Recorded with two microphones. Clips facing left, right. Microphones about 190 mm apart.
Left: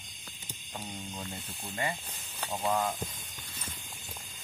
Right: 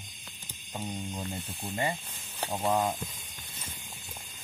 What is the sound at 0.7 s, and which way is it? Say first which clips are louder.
Speech: right 5 dB; 15° right (ahead or behind).